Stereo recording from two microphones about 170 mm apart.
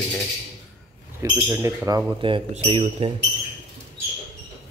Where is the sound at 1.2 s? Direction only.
15° right (ahead or behind).